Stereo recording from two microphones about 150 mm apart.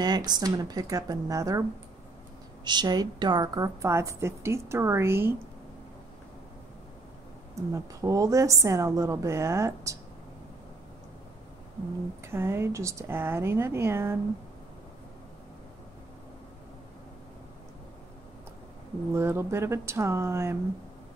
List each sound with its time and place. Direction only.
0.0 s a woman's voice: 25° right (ahead or behind)
2.6 s a woman's voice: 30° right (ahead or behind)
7.5 s a woman's voice: 20° right (ahead or behind)
12.3 s speech: 15° right (ahead or behind)
19.1 s speech: 15° right (ahead or behind)